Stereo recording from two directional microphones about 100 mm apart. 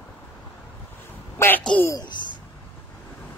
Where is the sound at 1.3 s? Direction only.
20° left (ahead or behind).